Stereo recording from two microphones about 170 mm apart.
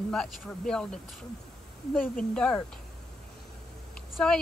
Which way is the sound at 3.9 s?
5° left (ahead or behind).